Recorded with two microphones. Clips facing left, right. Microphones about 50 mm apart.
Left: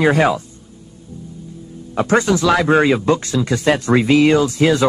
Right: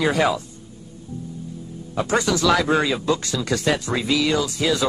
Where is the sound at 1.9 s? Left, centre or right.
Left.